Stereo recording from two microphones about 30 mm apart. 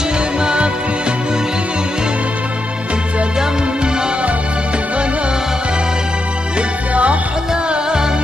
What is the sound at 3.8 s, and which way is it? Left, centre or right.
Music, right.